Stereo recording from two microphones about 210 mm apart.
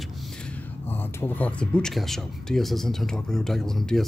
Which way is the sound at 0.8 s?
10° left (ahead or behind).